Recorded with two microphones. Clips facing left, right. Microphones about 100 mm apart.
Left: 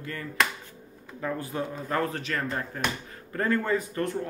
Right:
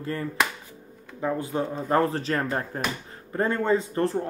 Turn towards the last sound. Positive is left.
turn(degrees=-30)  # may be behind; listen again after turning